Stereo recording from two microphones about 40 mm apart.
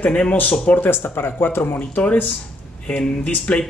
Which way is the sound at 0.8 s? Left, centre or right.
Left.